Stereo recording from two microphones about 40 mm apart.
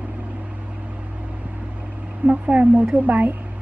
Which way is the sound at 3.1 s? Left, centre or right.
Right.